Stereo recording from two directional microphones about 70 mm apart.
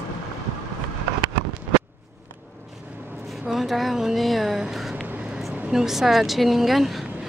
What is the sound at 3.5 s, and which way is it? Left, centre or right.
Speech, centre.